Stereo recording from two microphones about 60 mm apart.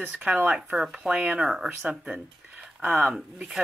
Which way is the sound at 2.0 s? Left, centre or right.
Centre.